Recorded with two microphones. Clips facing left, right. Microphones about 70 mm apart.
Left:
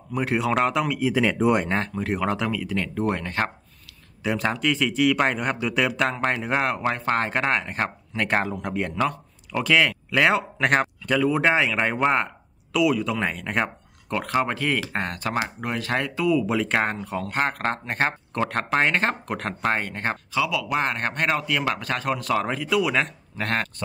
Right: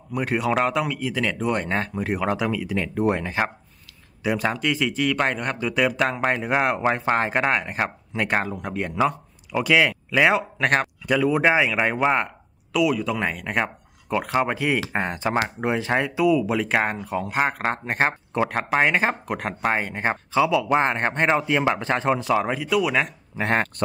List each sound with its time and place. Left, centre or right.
0.1 s speech: centre
1.0 s speech: centre
1.7 s speech: centre
20.3 s speech: right
22.3 s speech: centre
23.4 s speech: centre